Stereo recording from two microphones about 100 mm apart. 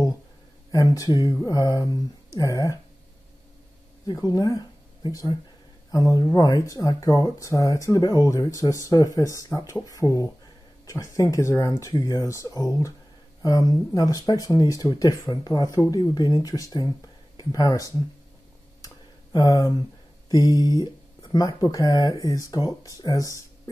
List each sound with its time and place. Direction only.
0.7 s speech: 35° left (ahead or behind)
4.1 s speech: 40° left (ahead or behind)
16.0 s speech: 45° left (ahead or behind)
16.3 s speech: 35° left (ahead or behind)
19.3 s speech: 40° left (ahead or behind)